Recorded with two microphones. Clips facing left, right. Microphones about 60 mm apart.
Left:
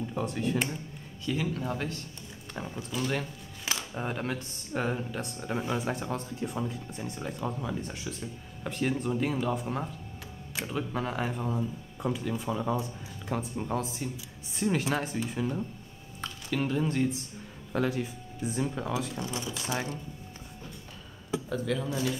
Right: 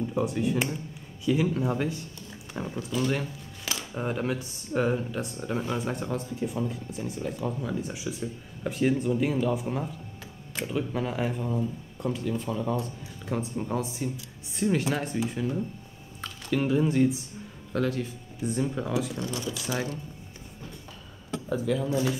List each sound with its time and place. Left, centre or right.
0.1 s speech: centre
17.7 s speech: centre
19.1 s speech: centre
21.5 s speech: centre